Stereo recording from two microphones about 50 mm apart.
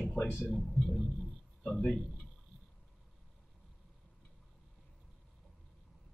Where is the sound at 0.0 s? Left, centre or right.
Centre.